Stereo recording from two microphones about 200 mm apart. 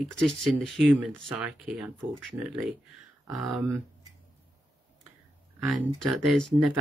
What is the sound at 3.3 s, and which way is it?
Speech, 20° right (ahead or behind).